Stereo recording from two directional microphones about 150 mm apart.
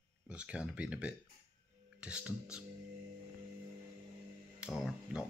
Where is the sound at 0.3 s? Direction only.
10° right (ahead or behind).